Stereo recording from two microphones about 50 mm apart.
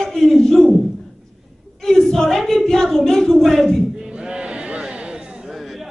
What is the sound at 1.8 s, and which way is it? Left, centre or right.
A woman's voice, centre.